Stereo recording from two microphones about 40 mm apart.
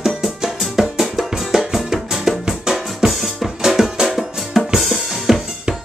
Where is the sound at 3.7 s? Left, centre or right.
Centre.